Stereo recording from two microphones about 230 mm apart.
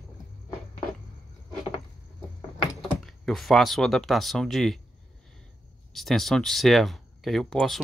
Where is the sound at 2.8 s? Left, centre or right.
Centre.